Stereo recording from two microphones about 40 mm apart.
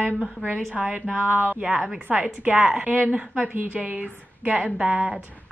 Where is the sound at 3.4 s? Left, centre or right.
Right.